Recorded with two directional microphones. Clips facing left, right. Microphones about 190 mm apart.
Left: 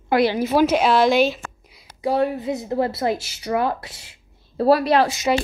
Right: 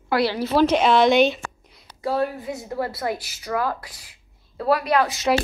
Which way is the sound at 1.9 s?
15° left (ahead or behind).